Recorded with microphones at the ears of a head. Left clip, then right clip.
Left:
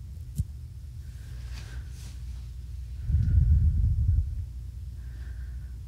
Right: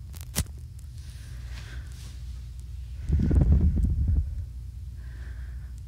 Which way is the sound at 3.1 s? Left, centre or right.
Right.